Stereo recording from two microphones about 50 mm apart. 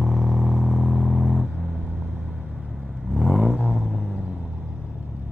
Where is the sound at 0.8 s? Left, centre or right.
Centre.